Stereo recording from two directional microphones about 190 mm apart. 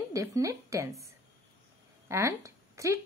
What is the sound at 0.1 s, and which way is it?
Speech, 15° right (ahead or behind).